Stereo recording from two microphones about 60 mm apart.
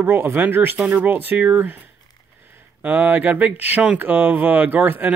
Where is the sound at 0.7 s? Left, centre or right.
Centre.